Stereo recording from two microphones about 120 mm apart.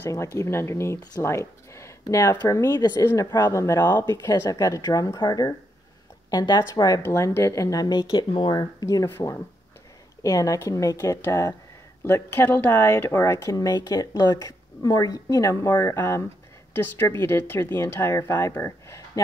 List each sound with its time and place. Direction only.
0.0 s speech: 20° left (ahead or behind)